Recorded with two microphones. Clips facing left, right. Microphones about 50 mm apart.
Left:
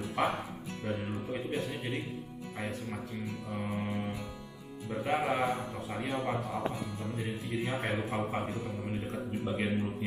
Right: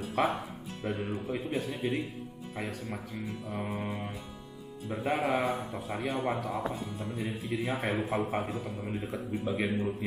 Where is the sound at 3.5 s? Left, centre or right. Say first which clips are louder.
Left 1 dB; centre.